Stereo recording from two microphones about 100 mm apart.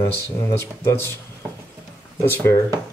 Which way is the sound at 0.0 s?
30° left (ahead or behind).